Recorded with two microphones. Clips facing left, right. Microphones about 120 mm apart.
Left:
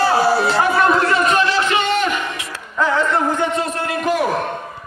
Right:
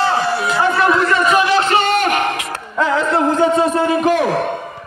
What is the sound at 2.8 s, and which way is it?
Music, 90° right.